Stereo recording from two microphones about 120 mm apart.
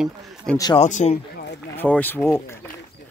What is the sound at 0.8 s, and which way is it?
Speech, 80° left.